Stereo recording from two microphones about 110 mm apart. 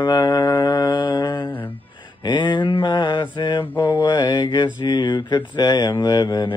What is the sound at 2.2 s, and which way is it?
Mantra, 45° left (ahead or behind).